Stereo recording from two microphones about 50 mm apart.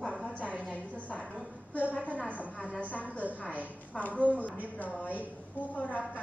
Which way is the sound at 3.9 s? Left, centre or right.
Left.